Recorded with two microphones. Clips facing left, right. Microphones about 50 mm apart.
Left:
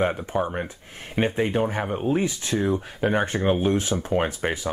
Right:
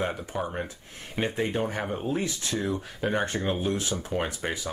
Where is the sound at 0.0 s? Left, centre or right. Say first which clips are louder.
Left 6 dB; left.